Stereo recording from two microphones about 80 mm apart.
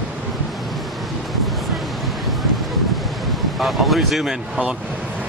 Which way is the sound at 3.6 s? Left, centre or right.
Centre.